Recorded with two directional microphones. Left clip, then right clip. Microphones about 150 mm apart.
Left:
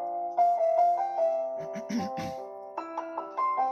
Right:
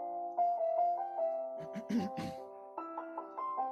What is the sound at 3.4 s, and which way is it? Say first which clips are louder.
Music: left 10 dB; 25° left (ahead or behind).